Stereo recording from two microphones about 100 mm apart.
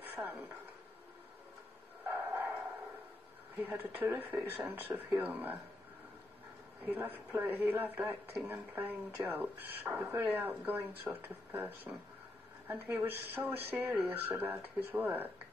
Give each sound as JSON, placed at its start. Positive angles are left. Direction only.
{"t": 0.0, "sound": "a sound", "side_deg": -20}
{"t": 2.0, "sound": "bow-wow", "side_deg": -20}
{"t": 3.5, "sound": "speech", "side_deg": -20}
{"t": 6.9, "sound": "speech", "side_deg": -20}